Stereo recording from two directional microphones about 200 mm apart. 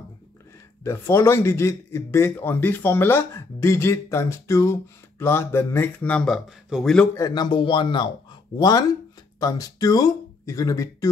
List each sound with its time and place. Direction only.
0.8 s a man's voice: 15° left (ahead or behind)
7.2 s a man's voice: 20° left (ahead or behind)